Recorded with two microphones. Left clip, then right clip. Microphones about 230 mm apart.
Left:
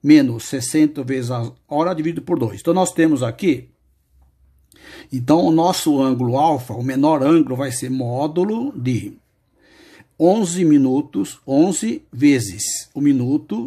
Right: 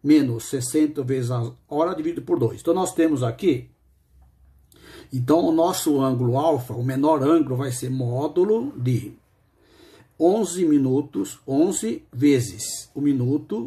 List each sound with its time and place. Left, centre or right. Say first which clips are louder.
0.0 s speech: left 5 dB; left
4.7 s speech: left 5 dB; left